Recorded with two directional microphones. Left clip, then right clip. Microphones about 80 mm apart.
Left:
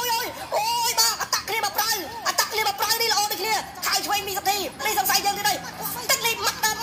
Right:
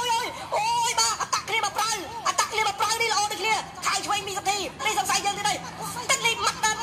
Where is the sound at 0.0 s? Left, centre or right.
Left.